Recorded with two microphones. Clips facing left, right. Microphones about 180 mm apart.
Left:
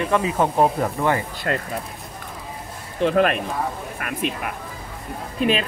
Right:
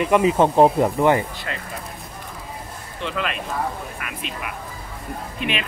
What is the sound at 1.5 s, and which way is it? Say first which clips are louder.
Speech: left 8 dB; 50° left (ahead or behind).